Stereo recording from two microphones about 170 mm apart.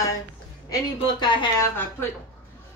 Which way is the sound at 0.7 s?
25° left (ahead or behind).